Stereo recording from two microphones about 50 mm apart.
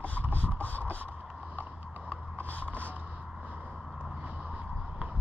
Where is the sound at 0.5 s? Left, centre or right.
Left.